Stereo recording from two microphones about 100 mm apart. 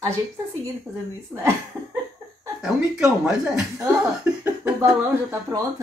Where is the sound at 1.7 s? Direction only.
20° right (ahead or behind).